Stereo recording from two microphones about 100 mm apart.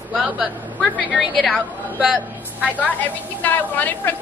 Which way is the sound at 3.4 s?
20° left (ahead or behind).